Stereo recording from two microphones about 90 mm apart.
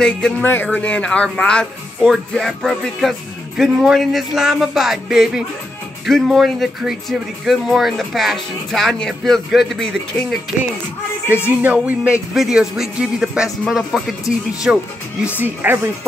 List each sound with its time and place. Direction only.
0.4 s speech: 20° left (ahead or behind)
2.0 s speech: centre (ahead or behind)
11.4 s speech: 20° right (ahead or behind)